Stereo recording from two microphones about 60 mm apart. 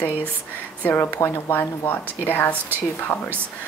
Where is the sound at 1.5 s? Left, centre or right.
Left.